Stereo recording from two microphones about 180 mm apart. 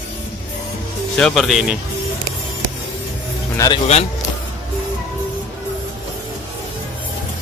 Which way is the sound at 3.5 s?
20° left (ahead or behind).